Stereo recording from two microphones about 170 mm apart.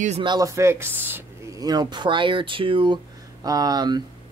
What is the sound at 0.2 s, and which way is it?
Speech, 25° right (ahead or behind).